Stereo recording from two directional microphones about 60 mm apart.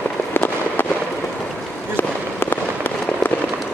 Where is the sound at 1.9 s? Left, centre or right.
Left.